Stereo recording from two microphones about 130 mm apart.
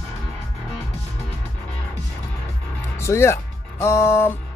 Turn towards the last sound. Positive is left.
turn(degrees=20)  # may be behind; listen again after turning